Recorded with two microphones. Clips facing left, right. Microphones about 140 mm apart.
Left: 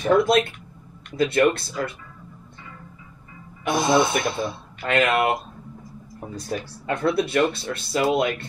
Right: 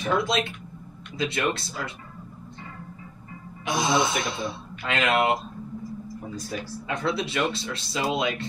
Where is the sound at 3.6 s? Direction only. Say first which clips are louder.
Left 4 dB; 55° left (ahead or behind).